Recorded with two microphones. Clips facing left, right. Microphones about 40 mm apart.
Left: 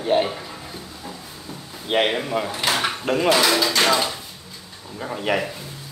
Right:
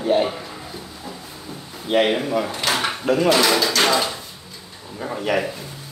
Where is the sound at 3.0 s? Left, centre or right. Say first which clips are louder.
Right 4 dB; left.